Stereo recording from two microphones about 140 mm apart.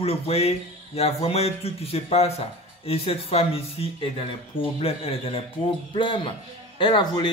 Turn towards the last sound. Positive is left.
turn(degrees=35)  # may be behind; listen again after turning